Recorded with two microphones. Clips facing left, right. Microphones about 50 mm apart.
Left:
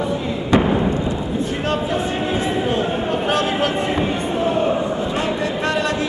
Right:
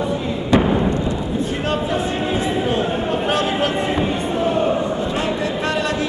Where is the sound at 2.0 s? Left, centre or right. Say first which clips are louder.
Even; centre.